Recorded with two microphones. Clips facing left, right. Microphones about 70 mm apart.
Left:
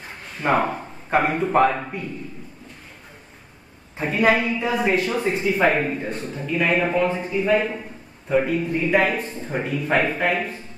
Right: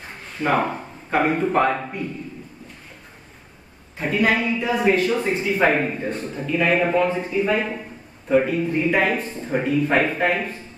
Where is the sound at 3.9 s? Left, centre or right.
Left.